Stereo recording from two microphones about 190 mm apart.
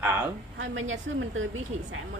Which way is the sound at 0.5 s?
90° right.